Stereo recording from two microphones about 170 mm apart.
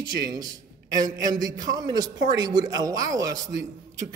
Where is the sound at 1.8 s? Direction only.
25° right (ahead or behind).